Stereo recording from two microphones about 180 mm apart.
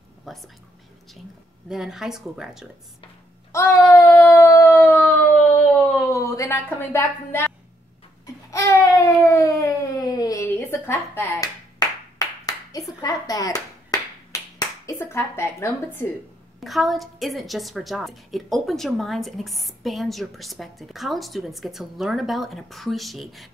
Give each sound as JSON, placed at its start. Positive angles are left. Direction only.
{"t": 0.2, "sound": "speech", "side_deg": 0}
{"t": 1.7, "sound": "a woman's voice", "side_deg": -5}
{"t": 3.5, "sound": "a sound", "side_deg": 15}
{"t": 5.9, "sound": "a woman's voice", "side_deg": 15}
{"t": 8.5, "sound": "baby cry", "side_deg": 15}
{"t": 12.2, "sound": "clapping", "side_deg": 20}
{"t": 16.5, "sound": "a woman's voice", "side_deg": 0}